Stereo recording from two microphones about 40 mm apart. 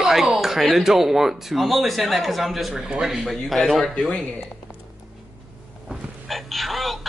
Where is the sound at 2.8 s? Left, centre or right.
Centre.